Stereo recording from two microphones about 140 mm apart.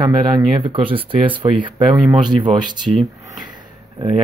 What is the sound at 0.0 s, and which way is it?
Speech, 30° right (ahead or behind).